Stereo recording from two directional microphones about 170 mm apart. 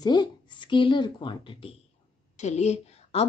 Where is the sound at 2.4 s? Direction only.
40° left (ahead or behind).